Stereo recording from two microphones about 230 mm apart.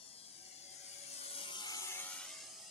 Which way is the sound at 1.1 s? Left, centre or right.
Left.